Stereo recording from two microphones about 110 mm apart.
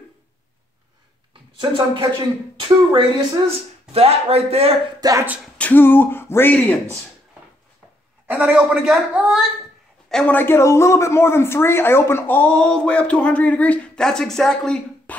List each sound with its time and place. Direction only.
1.3 s a sound: 50° right (ahead or behind)
2.6 s a woman's voice: 45° right (ahead or behind)
3.9 s speech: 65° right (ahead or behind)
5.0 s speech: 35° right (ahead or behind)
5.6 s speech: 15° left (ahead or behind)
8.3 s a man's voice: 15° right (ahead or behind)
10.0 s a sound: 5° left (ahead or behind)
10.3 s a man's voice: 20° left (ahead or behind)